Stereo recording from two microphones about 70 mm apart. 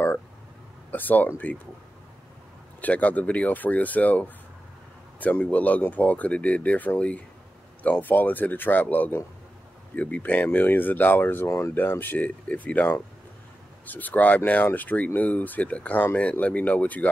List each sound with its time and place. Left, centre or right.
0.9 s speech: left
2.8 s speech: left
11.7 s speech: left